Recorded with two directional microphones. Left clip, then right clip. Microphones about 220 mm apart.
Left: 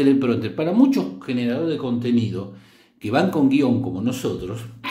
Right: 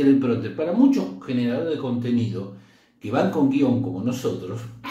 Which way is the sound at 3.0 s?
45° left (ahead or behind).